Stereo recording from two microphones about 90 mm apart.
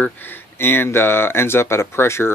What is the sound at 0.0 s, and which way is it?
Speech, 25° left (ahead or behind).